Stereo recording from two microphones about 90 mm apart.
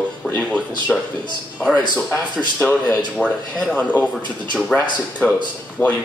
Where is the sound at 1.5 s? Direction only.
10° left (ahead or behind).